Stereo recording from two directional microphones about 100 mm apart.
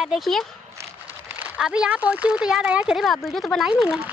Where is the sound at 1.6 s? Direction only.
10° right (ahead or behind).